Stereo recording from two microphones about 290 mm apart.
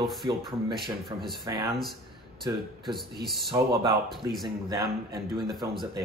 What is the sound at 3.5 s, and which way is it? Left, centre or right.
Speech, centre.